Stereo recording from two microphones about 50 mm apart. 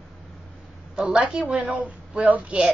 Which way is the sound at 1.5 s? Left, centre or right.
Right.